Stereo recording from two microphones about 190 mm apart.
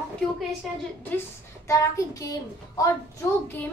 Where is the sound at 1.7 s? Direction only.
15° left (ahead or behind).